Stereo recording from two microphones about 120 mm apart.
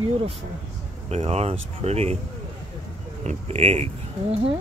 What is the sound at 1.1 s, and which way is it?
Speech, 60° right (ahead or behind).